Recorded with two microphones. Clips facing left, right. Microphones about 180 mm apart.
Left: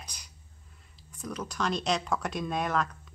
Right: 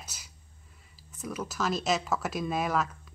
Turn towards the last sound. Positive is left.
turn(degrees=-5)  # may be behind; listen again after turning